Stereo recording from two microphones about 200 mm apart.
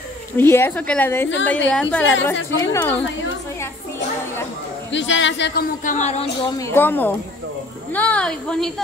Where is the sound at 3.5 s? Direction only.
10° left (ahead or behind).